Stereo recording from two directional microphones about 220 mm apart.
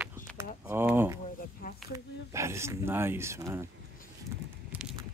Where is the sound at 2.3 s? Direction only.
10° right (ahead or behind).